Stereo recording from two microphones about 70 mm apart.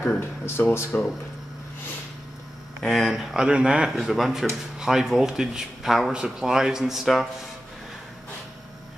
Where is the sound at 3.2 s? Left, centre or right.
Centre.